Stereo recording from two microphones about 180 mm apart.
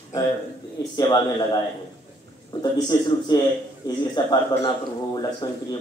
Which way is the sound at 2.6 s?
25° left (ahead or behind).